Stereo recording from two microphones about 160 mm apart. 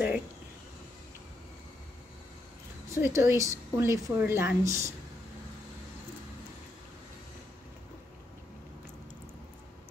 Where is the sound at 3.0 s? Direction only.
15° right (ahead or behind).